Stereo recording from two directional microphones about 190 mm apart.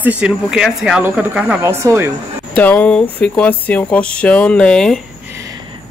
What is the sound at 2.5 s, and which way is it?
Speech, 10° left (ahead or behind).